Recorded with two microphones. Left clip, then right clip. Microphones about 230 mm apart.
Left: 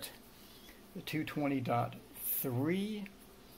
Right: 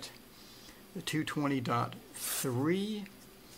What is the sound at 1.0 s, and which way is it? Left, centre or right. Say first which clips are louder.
Speech: right 3 dB; right.